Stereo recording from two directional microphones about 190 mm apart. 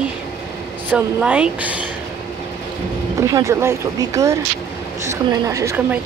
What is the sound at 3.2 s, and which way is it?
Speech, 15° right (ahead or behind).